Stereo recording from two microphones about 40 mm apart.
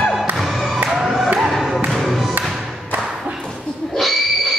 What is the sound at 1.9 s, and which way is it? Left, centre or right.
Music, centre.